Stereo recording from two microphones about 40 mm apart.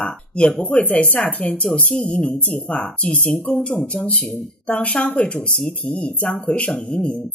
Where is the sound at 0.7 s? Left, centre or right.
Left.